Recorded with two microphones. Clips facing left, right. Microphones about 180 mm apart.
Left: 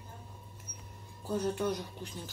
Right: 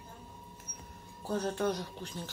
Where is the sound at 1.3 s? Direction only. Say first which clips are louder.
Even; 10° left (ahead or behind).